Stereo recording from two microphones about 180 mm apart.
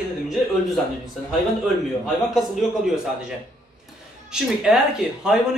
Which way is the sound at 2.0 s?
Centre (ahead or behind).